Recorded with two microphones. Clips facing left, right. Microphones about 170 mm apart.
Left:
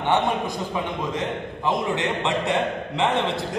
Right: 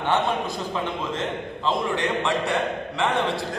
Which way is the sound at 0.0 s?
20° left (ahead or behind).